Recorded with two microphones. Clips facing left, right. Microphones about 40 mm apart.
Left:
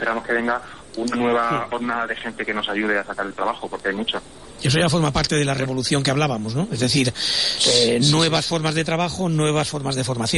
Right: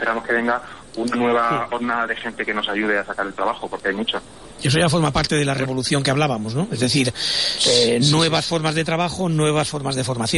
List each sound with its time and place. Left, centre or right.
0.0 s a man's voice: centre